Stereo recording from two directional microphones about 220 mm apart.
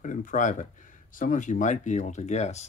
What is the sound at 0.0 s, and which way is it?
Speech, 35° left (ahead or behind).